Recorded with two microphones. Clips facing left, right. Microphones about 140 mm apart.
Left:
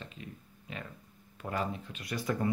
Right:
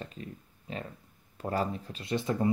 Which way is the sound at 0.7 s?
35° right (ahead or behind).